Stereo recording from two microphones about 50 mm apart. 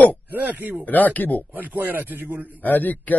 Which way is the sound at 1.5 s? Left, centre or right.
Right.